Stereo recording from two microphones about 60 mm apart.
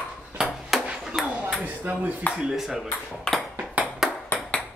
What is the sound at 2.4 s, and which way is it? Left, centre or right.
Speech, centre.